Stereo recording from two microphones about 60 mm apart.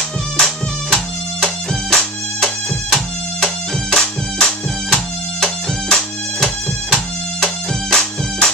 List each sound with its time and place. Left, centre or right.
1.4 s music: centre